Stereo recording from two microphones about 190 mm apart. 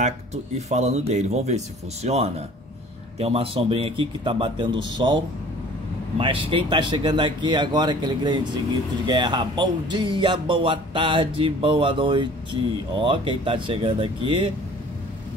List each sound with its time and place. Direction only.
0.0 s speech: 35° right (ahead or behind)